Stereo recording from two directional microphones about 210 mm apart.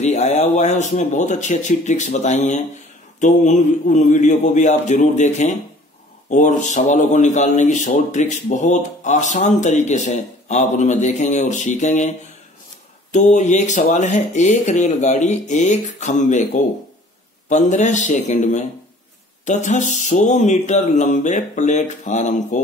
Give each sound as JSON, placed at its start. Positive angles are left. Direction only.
{"t": 0.0, "sound": "a man's voice", "side_deg": 35}
{"t": 13.1, "sound": "a man's voice", "side_deg": 35}